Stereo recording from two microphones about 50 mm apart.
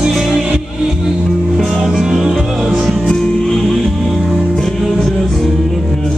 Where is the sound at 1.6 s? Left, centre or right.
Centre.